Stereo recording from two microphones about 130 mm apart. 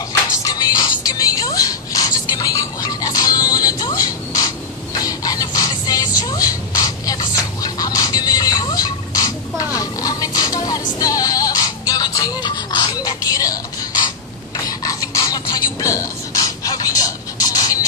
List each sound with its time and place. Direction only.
0.4 s music: 30° left (ahead or behind)
4.9 s vehicle: 30° left (ahead or behind)
14.8 s a sound: 30° left (ahead or behind)